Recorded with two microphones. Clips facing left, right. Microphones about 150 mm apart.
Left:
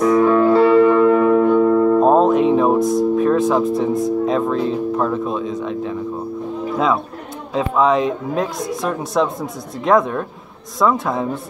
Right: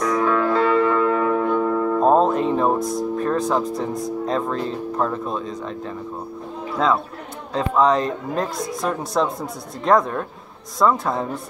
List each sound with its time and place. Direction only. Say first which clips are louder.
0.0 s music: left 7 dB; 25° left (ahead or behind)
2.0 s music: left 4 dB; centre (ahead or behind)
7.5 s speech: left 2 dB; 5° left (ahead or behind)